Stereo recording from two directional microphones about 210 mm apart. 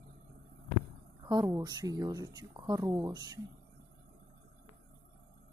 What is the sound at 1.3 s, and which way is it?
Speech, 15° right (ahead or behind).